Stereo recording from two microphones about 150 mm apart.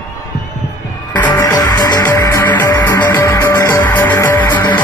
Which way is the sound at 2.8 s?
25° left (ahead or behind).